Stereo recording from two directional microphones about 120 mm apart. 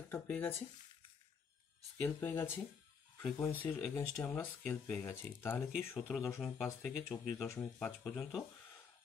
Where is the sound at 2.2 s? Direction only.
20° left (ahead or behind).